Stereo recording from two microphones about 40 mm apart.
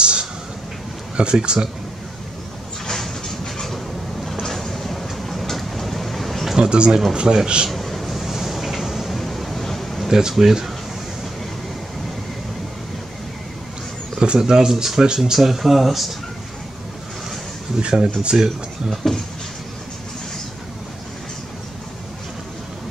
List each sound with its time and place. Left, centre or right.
0.0 s a sound: right
1.1 s speech: right
2.9 s vehicle: centre
6.7 s speech: right
7.7 s a sound: centre
10.0 s speech: centre
14.1 s speech: centre
15.3 s speech: centre
17.7 s speech: right
19.0 s speech: centre